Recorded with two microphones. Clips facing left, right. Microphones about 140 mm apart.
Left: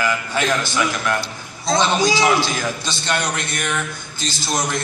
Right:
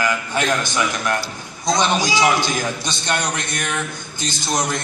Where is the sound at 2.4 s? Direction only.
20° right (ahead or behind).